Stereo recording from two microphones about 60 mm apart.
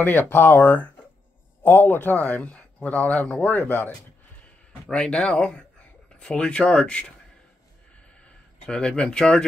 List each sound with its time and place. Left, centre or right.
0.0 s speech: left
4.9 s speech: centre
8.5 s speech: centre